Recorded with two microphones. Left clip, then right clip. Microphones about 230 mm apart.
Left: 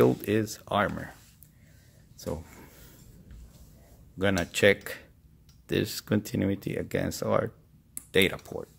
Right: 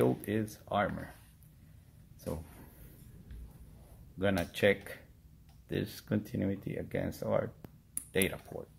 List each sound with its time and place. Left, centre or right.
0.0 s speech: left
2.2 s speech: left
4.2 s speech: left